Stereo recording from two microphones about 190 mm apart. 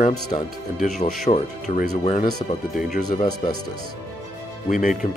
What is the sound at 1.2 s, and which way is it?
Speech, 40° left (ahead or behind).